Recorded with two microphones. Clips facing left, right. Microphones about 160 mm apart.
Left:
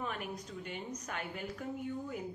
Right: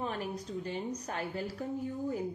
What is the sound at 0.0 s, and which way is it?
A woman's voice, 35° right (ahead or behind).